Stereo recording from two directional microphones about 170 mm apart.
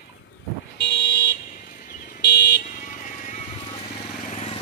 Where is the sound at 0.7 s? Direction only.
85° left.